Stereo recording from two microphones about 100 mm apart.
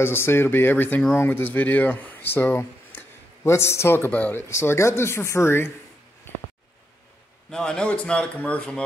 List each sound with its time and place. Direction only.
0.0 s speech: 25° left (ahead or behind)
7.5 s a man's voice: 10° left (ahead or behind)